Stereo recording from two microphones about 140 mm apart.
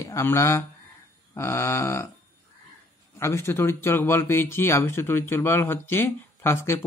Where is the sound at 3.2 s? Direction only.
20° left (ahead or behind).